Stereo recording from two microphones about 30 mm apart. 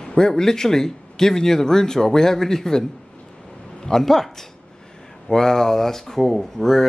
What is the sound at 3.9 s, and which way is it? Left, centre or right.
Speech, centre.